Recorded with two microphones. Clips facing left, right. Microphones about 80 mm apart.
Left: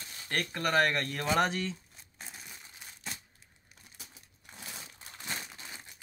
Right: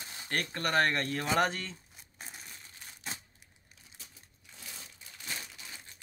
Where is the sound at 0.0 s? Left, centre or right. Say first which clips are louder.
Right 2 dB; right.